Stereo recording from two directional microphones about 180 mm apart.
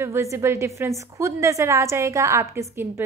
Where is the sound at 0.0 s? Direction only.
15° right (ahead or behind).